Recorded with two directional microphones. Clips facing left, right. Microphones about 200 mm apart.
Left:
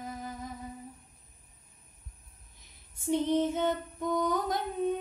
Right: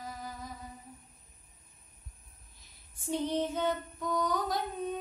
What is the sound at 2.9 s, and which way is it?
Female singing, 20° left (ahead or behind).